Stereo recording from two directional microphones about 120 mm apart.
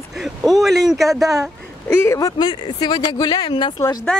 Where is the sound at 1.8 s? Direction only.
20° left (ahead or behind).